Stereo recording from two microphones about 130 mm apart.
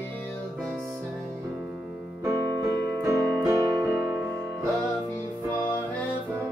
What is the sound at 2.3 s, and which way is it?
Music, 25° right (ahead or behind).